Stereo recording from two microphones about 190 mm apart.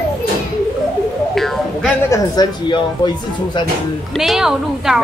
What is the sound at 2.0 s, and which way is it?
Speech, 20° left (ahead or behind).